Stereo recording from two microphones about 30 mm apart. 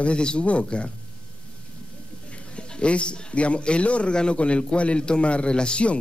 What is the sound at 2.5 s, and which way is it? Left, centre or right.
A man's voice, left.